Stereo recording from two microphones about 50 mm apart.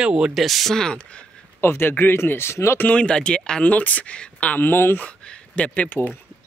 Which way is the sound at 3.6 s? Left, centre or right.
Left.